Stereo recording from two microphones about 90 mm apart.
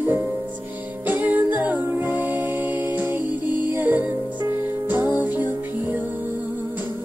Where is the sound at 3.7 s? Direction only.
20° right (ahead or behind).